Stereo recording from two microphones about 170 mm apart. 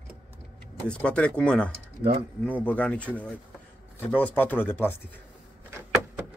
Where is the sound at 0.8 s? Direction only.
5° left (ahead or behind).